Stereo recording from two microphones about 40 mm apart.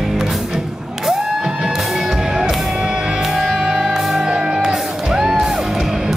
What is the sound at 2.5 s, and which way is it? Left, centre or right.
Music, centre.